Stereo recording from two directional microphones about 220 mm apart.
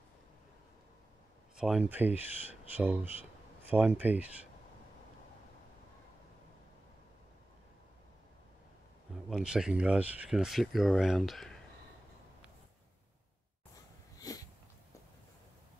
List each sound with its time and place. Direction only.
1.6 s speech: 5° right (ahead or behind)
9.1 s speech: 5° right (ahead or behind)
14.2 s dog: 15° left (ahead or behind)